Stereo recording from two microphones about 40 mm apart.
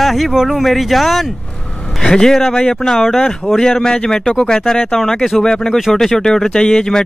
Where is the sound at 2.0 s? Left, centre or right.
Centre.